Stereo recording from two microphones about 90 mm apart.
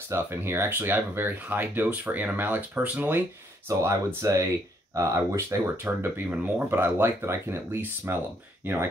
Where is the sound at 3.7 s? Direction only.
35° right (ahead or behind).